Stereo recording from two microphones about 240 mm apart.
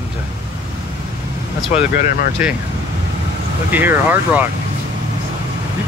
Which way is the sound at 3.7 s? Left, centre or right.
Centre.